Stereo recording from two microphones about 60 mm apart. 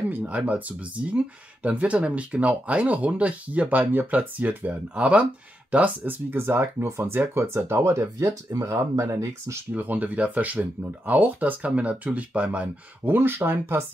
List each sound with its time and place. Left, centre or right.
0.1 s speech: right
6.3 s speech: right
7.8 s speech: right
9.0 s speech: right
9.8 s speech: right